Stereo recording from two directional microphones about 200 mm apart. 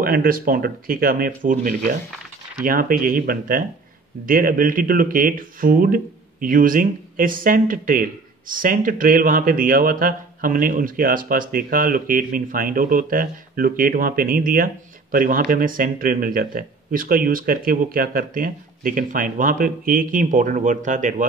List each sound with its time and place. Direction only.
0.0 s speech: 45° right (ahead or behind)